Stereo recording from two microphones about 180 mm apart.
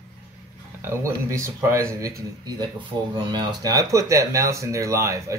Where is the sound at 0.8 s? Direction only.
15° right (ahead or behind).